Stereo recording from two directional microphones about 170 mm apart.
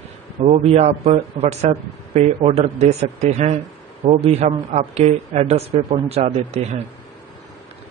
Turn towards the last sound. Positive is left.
turn(degrees=-40)  # may be behind; listen again after turning